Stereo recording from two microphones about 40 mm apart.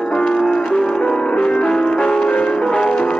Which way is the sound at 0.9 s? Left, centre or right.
Left.